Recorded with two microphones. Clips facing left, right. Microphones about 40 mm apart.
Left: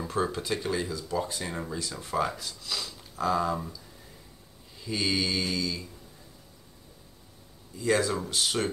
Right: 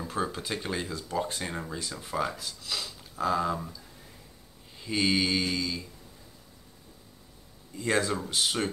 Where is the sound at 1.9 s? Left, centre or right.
Centre.